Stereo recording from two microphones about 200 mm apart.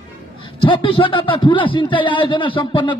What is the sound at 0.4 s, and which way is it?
A man's voice, 25° left (ahead or behind).